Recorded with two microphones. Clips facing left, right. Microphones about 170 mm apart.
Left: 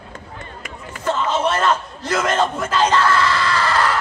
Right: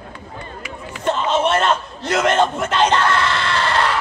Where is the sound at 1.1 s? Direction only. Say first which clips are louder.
Right 2 dB; 25° right (ahead or behind).